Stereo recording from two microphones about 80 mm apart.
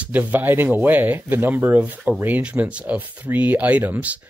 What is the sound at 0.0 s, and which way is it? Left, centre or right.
Speech, right.